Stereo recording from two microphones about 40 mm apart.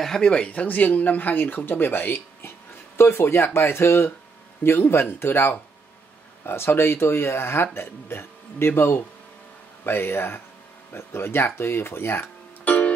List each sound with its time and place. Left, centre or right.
0.2 s speech: left
0.7 s speech: left
3.0 s speech: left
4.6 s speech: left
12.6 s music: left